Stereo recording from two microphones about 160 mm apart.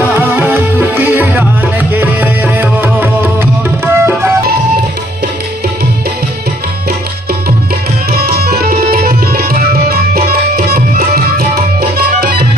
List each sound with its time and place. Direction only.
0.1 s music: 10° right (ahead or behind)
8.4 s tabla: 75° right (ahead or behind)